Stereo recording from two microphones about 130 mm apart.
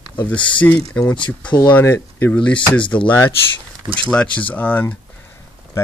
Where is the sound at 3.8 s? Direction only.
40° right (ahead or behind).